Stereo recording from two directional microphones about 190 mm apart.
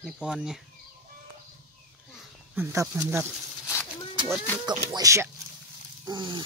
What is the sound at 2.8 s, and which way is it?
Speech, 10° right (ahead or behind).